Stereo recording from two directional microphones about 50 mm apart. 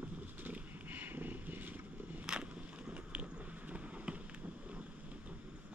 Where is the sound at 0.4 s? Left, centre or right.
Right.